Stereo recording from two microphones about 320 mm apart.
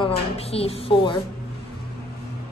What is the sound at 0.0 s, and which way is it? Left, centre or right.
A woman's voice, centre.